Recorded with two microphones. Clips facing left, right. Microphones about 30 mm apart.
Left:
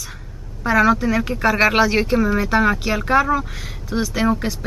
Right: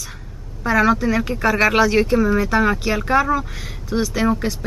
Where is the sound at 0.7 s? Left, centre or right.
Centre.